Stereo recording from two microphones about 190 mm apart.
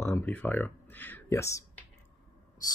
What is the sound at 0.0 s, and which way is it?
Speech, 10° left (ahead or behind).